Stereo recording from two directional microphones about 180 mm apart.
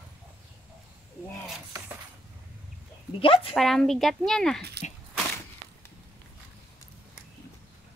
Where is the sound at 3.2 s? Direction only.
30° left (ahead or behind).